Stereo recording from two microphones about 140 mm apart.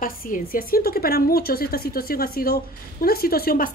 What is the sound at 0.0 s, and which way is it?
A woman's voice, 85° left.